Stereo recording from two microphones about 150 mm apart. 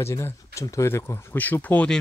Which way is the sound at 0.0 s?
20° left (ahead or behind).